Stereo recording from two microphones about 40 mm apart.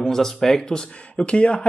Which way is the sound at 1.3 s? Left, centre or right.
Left.